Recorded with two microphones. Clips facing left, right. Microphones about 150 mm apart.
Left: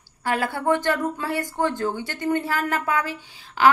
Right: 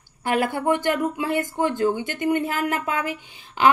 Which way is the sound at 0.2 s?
15° right (ahead or behind).